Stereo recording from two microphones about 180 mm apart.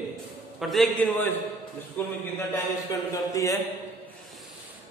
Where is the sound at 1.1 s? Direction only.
10° left (ahead or behind).